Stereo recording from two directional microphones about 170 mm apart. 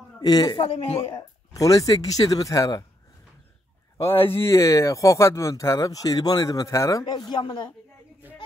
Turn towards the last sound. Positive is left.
turn(degrees=25)  # may be behind; listen again after turning